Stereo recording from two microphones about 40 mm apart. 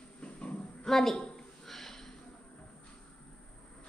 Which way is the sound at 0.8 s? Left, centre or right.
Centre.